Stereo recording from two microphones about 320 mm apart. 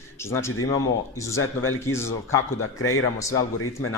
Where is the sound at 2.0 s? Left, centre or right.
Centre.